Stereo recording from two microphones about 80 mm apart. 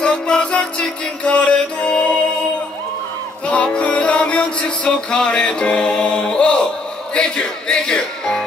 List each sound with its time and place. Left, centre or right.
0.0 s music: centre
3.4 s music: centre